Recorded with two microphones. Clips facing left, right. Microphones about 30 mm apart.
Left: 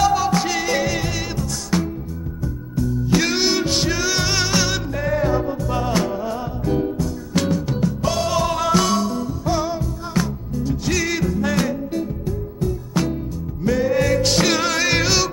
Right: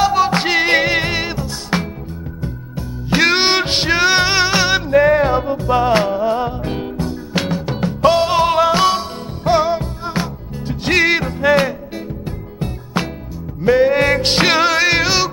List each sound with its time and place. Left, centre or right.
0.0 s music: right
9.4 s music: right
14.7 s music: right